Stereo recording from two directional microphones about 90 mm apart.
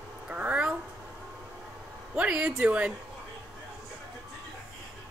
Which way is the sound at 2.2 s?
10° right (ahead or behind).